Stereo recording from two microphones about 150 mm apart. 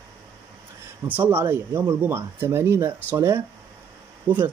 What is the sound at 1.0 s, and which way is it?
Speech, 10° right (ahead or behind).